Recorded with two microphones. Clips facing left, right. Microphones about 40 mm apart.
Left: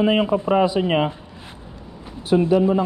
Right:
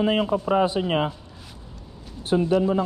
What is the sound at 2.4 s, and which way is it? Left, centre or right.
Speech, left.